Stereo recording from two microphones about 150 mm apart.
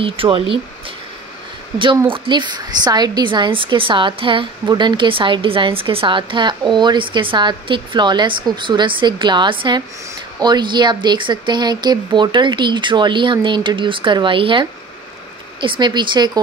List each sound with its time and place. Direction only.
0.0 s a woman's voice: 35° right (ahead or behind)
2.0 s a woman's voice: 35° right (ahead or behind)